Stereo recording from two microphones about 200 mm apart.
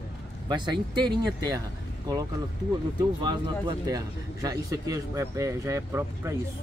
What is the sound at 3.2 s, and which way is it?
Speech, 20° right (ahead or behind).